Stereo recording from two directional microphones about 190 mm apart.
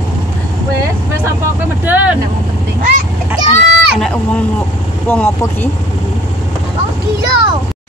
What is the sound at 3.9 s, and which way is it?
Speech, 5° left (ahead or behind).